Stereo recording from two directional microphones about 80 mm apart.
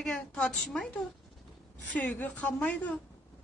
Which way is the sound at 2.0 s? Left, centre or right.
Centre.